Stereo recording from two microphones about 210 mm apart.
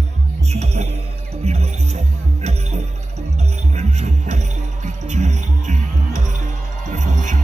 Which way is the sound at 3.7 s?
35° right (ahead or behind).